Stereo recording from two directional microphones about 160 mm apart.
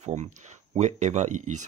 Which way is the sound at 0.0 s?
45° right (ahead or behind).